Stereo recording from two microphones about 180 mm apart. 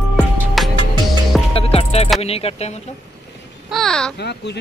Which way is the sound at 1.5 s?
35° left (ahead or behind).